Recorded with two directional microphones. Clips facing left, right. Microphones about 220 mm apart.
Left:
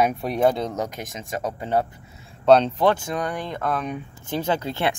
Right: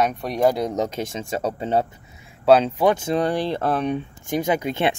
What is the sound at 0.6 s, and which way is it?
Speech, 20° right (ahead or behind).